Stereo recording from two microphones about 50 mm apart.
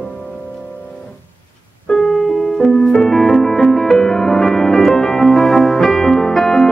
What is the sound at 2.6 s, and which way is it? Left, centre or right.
Music, centre.